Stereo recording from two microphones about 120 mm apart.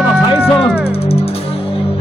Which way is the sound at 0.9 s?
55° left (ahead or behind).